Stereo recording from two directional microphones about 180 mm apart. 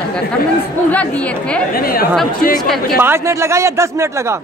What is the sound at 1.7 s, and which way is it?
Speech, 55° left (ahead or behind).